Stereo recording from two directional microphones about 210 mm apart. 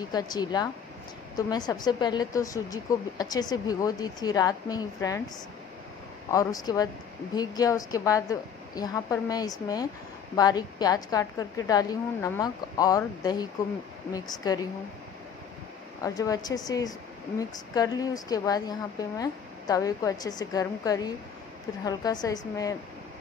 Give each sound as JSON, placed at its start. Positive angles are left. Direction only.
{"t": 0.1, "sound": "speech", "side_deg": 20}
{"t": 6.3, "sound": "speech", "side_deg": 15}
{"t": 16.0, "sound": "speech", "side_deg": 15}